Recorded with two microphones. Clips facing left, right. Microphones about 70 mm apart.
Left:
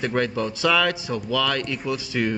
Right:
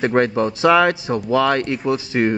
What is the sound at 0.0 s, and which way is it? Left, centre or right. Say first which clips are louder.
A man's voice: right 7 dB; right.